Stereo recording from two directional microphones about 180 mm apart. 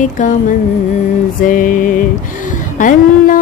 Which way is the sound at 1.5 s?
50° left (ahead or behind).